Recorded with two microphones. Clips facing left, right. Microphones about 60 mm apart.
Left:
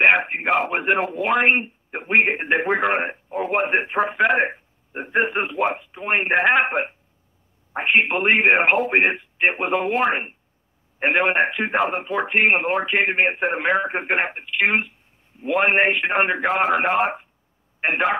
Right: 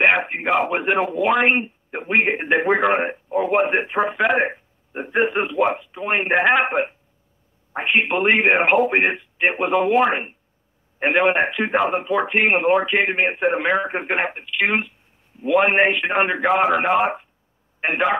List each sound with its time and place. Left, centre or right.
0.0 s a man's voice: centre